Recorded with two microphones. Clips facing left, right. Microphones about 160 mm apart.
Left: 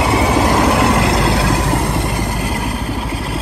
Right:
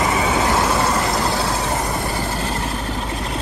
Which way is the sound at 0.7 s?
80° left.